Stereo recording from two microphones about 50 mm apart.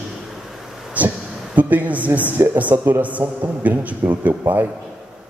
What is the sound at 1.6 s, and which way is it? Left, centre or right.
Speech, right.